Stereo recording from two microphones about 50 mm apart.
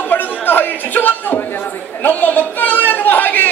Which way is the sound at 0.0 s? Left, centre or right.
Left.